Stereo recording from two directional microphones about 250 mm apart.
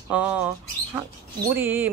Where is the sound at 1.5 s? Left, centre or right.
Centre.